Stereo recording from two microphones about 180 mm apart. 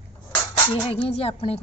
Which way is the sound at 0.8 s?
30° left (ahead or behind).